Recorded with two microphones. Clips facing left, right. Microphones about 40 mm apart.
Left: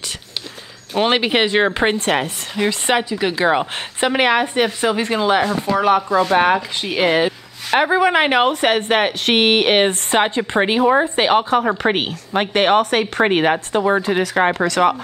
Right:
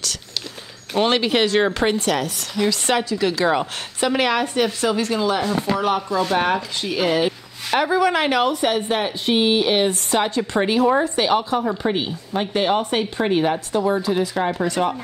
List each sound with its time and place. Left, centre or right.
0.9 s speech: centre
2.0 s speech: left
5.8 s speech: left
7.2 s speech: left
8.5 s a woman's voice: left
11.8 s speech: left
14.2 s speech: left